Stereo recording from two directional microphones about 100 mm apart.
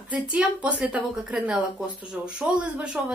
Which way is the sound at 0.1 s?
10° right (ahead or behind).